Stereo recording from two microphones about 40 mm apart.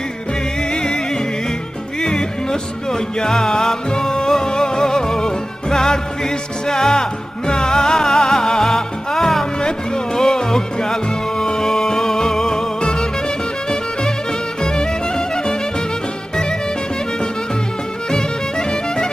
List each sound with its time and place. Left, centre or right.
2.0 s music: centre
14.6 s music: centre